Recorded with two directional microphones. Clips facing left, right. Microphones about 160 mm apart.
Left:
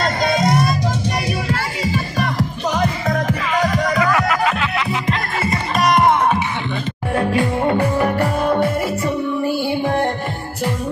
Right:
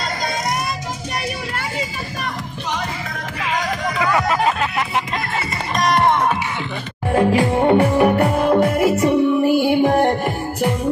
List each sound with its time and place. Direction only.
2.7 s music: 45° left (ahead or behind)
7.7 s music: 15° right (ahead or behind)
9.7 s music: 20° right (ahead or behind)